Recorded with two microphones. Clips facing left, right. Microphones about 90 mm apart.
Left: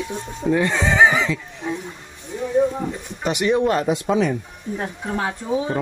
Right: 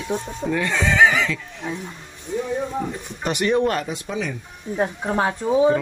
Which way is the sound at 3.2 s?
10° left (ahead or behind).